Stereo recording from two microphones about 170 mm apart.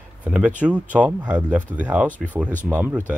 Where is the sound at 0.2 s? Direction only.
10° right (ahead or behind).